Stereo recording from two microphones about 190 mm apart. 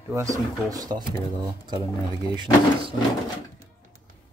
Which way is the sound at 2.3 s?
25° right (ahead or behind).